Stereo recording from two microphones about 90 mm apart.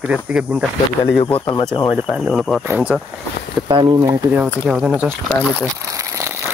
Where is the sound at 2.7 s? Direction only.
20° right (ahead or behind).